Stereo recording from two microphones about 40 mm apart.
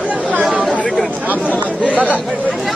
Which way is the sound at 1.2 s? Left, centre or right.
Right.